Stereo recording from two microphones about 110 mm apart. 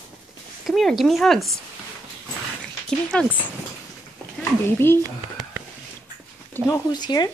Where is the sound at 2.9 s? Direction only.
10° left (ahead or behind).